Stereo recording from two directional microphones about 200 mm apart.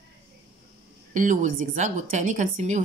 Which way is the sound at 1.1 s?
40° right (ahead or behind).